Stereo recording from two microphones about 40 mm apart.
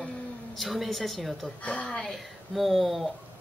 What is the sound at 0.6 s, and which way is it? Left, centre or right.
Speech, centre.